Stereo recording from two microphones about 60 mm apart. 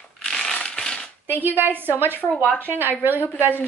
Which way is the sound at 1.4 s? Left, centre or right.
Right.